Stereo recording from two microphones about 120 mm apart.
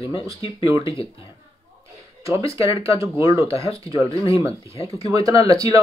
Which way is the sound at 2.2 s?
25° right (ahead or behind).